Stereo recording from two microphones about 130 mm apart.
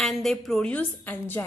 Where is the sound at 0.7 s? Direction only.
15° left (ahead or behind).